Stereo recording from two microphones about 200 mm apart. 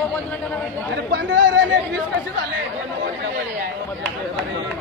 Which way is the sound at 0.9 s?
55° right (ahead or behind).